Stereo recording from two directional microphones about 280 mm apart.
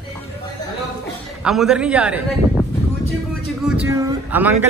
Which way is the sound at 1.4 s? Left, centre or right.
Centre.